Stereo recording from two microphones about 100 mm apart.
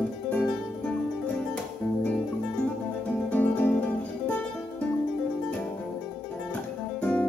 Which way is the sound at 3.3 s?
20° left (ahead or behind).